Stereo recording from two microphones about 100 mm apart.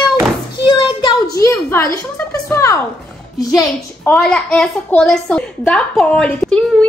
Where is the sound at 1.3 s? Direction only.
30° left (ahead or behind).